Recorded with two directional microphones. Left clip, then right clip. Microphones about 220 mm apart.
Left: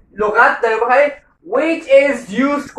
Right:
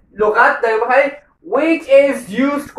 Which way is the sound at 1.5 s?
10° right (ahead or behind).